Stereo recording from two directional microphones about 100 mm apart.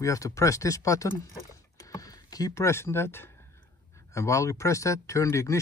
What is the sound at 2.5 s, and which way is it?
Speech, 25° left (ahead or behind).